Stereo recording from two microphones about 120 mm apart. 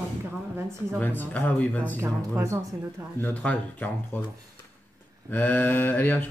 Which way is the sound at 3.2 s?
10° left (ahead or behind).